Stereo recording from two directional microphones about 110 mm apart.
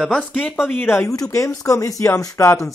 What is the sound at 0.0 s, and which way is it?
Speech, 5° left (ahead or behind).